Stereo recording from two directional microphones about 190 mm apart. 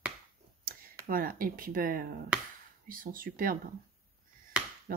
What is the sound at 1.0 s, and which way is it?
Speech, 50° right (ahead or behind).